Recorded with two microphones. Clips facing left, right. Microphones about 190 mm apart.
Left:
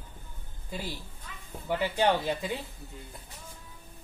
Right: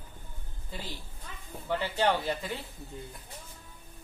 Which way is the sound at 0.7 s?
10° left (ahead or behind).